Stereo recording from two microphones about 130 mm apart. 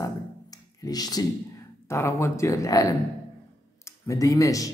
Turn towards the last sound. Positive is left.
turn(degrees=25)  # may be behind; listen again after turning